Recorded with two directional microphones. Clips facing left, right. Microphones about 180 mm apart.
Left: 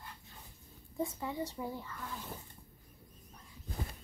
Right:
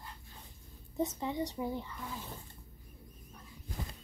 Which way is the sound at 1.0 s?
20° right (ahead or behind).